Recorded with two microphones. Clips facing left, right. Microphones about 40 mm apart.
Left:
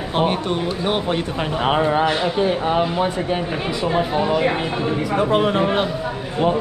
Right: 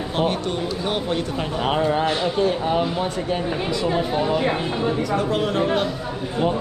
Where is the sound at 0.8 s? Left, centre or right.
Centre.